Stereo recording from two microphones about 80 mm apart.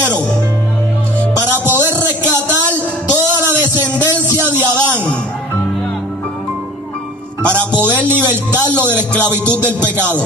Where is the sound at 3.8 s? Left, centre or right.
Right.